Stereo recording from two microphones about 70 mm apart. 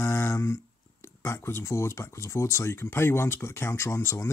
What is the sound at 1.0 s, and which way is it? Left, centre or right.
Speech, left.